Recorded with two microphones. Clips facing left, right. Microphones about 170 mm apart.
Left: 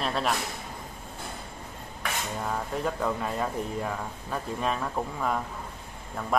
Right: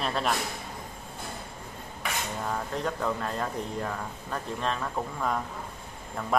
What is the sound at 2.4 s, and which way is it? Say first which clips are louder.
Speech: left 1 dB; 5° left (ahead or behind).